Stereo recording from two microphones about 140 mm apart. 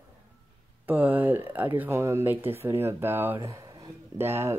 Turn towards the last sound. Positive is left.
turn(degrees=-15)  # may be behind; listen again after turning